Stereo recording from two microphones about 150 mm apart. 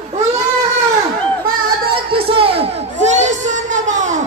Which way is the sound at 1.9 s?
35° right (ahead or behind).